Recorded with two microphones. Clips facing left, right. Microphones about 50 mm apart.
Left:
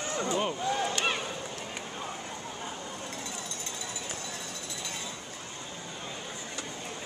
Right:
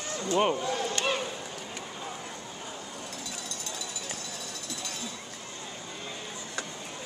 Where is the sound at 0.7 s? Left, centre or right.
Left.